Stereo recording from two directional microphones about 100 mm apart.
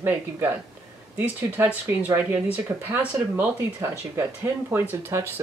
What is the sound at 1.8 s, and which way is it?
Speech, 20° right (ahead or behind).